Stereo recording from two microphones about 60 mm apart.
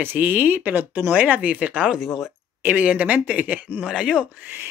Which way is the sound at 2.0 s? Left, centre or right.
Centre.